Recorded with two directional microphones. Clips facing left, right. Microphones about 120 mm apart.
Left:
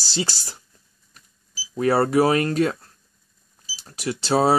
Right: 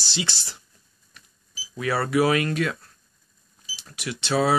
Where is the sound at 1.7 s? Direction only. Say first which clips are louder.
Left 5 dB; 40° left (ahead or behind).